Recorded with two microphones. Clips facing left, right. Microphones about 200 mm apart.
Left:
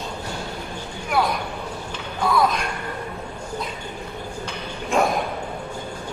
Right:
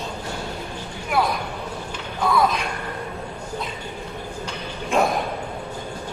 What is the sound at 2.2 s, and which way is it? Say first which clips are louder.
Music: even; centre (ahead or behind).